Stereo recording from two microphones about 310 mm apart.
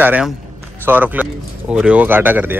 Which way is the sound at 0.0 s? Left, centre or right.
Centre.